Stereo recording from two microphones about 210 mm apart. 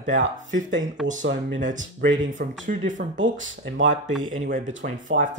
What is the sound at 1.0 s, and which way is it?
Speech, centre (ahead or behind).